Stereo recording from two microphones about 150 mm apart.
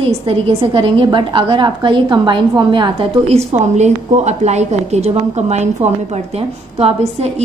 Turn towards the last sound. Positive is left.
turn(degrees=-45)  # may be behind; listen again after turning